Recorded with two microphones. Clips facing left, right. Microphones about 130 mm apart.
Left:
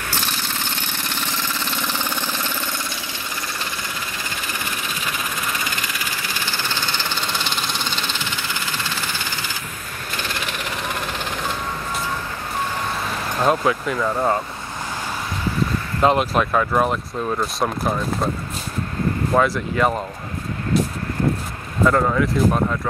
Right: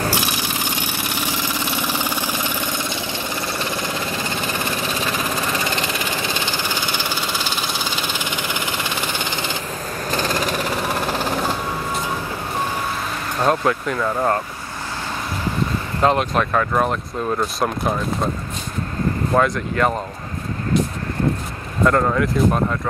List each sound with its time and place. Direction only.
0.1 s engine: 10° right (ahead or behind)
5.8 s engine: 25° right (ahead or behind); by 8.0 s 5° right (ahead or behind)
8.4 s a sound: 15° right (ahead or behind)
10.1 s engine: 40° right (ahead or behind)
13.4 s speech: centre (ahead or behind)
16.0 s speech: 5° left (ahead or behind)
19.3 s speech: 5° left (ahead or behind)
21.8 s speech: centre (ahead or behind)